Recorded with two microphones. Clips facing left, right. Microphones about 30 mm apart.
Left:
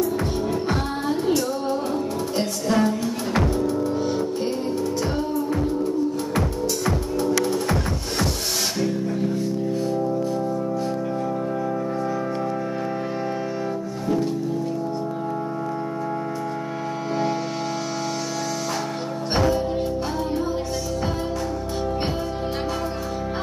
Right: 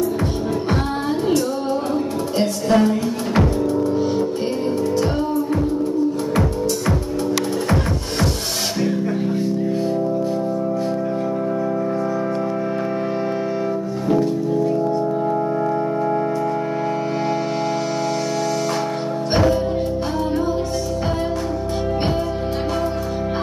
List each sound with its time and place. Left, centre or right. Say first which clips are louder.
2.3 s music: right 5 dB; centre
19.3 s music: right 4 dB; centre